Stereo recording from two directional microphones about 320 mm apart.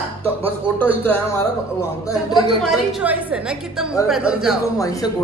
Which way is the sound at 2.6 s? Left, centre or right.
Centre.